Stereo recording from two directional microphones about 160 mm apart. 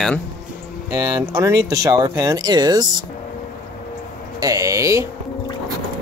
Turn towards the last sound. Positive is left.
turn(degrees=-20)  # may be behind; listen again after turning